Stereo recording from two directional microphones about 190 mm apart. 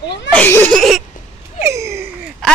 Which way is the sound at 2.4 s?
5° left (ahead or behind).